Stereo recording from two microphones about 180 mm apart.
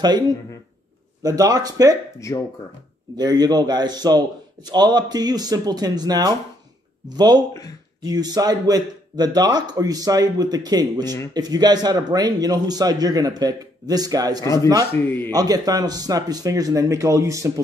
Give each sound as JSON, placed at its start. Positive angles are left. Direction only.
{"t": 1.2, "sound": "a man's voice", "side_deg": -20}
{"t": 2.1, "sound": "speech", "side_deg": 15}
{"t": 3.2, "sound": "a man's voice", "side_deg": -20}
{"t": 14.4, "sound": "speech", "side_deg": 15}
{"t": 15.3, "sound": "a man's voice", "side_deg": -20}